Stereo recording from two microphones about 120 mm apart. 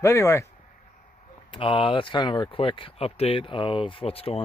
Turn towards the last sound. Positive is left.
turn(degrees=55)  # may be behind; listen again after turning